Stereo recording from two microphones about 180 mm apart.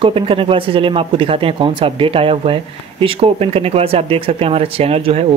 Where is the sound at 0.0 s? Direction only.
30° right (ahead or behind).